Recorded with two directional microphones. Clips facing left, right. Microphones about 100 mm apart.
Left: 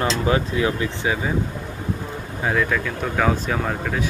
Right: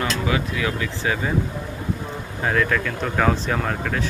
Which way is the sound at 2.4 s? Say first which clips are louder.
Even; 5° left (ahead or behind).